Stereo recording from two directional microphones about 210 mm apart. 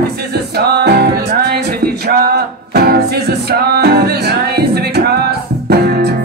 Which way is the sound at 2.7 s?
45° right (ahead or behind).